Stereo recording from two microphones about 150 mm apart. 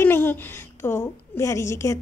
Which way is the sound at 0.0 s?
15° left (ahead or behind).